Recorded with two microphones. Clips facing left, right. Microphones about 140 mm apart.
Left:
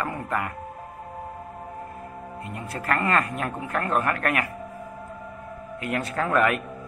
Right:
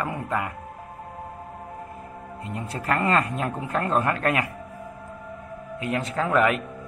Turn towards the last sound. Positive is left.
turn(degrees=-20)  # may be behind; listen again after turning